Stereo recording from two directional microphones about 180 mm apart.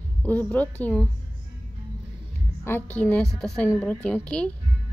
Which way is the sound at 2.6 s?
10° left (ahead or behind).